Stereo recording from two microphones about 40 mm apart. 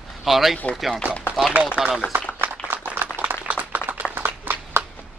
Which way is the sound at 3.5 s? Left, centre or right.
Right.